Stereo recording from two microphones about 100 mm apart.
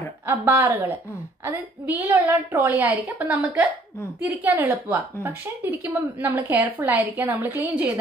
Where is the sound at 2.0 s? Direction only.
20° right (ahead or behind).